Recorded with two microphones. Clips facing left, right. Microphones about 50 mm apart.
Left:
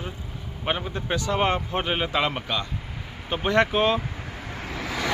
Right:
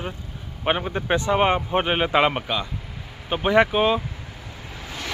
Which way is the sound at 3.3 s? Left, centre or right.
Centre.